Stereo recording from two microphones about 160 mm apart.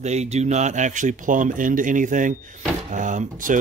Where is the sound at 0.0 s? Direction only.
45° right (ahead or behind).